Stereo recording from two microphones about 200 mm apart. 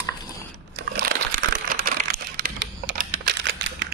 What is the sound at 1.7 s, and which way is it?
Typing, 45° right (ahead or behind).